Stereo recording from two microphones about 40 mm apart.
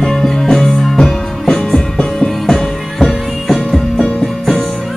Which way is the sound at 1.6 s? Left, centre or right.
Centre.